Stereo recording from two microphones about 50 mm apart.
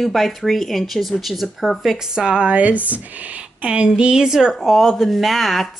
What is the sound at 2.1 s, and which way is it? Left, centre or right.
Speech, centre.